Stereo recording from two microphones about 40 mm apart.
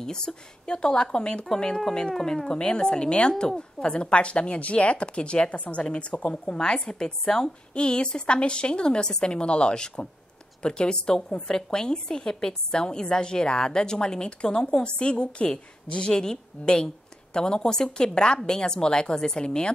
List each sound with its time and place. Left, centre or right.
0.0 s speech: centre; by 6.3 s left
6.3 s a woman's voice: left